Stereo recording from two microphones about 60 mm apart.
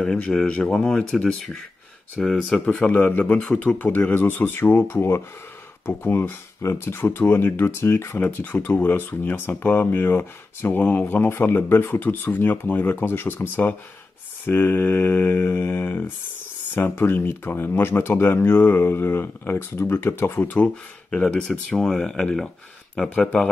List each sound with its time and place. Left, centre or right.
0.0 s speech: centre
2.9 s speech: left
20.4 s speech: left
21.1 s speech: centre